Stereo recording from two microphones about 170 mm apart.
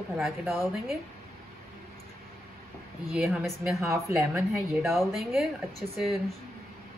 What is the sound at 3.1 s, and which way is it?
Speech, 5° right (ahead or behind).